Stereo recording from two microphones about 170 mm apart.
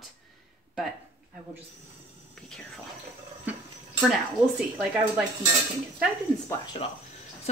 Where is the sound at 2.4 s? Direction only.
5° left (ahead or behind).